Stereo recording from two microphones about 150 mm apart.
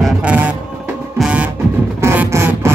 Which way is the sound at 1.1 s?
5° right (ahead or behind).